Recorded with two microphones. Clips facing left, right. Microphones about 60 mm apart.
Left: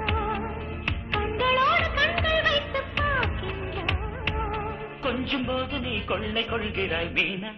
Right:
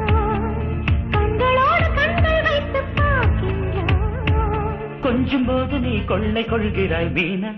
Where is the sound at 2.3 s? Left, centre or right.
Centre.